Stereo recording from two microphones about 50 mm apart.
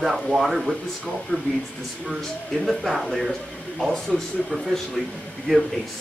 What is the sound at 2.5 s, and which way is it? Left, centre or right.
Speech, centre.